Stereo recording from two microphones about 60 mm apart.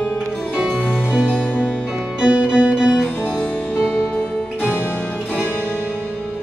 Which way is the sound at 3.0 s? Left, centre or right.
Left.